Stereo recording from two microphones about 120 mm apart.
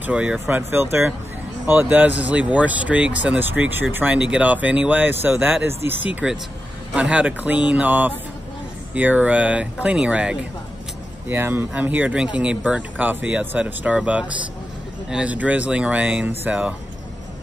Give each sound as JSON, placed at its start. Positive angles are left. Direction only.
{"t": 0.0, "sound": "speech", "side_deg": -10}